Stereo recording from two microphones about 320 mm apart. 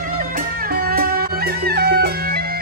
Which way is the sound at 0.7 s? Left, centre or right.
Right.